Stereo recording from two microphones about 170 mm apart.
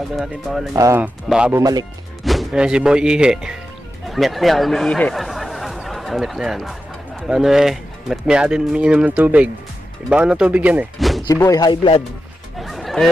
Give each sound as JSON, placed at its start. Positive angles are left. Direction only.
{"t": 0.1, "sound": "speech", "side_deg": 0}
{"t": 0.7, "sound": "speech", "side_deg": -15}
{"t": 1.6, "sound": "speech", "side_deg": -20}
{"t": 2.2, "sound": "speech", "side_deg": 0}
{"t": 11.3, "sound": "speech", "side_deg": 20}
{"t": 12.5, "sound": "a sound", "side_deg": 0}